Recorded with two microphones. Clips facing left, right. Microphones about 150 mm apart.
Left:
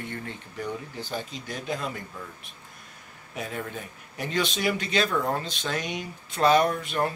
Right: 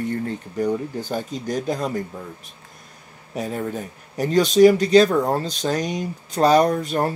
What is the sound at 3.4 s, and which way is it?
Speech, 40° right (ahead or behind).